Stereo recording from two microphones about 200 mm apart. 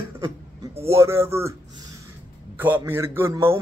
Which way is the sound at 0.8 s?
15° right (ahead or behind).